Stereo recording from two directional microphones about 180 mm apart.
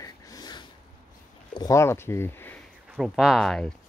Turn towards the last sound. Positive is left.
turn(degrees=0)  # may be behind; listen again after turning